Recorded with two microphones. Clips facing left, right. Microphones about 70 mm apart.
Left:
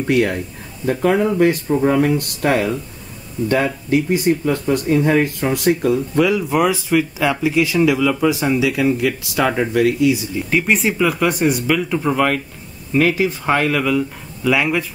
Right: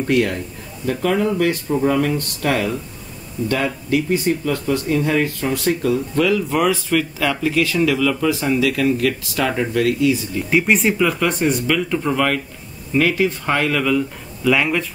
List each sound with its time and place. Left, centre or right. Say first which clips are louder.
0.0 s speech: left 1 dB; left
10.5 s speech: right 1 dB; centre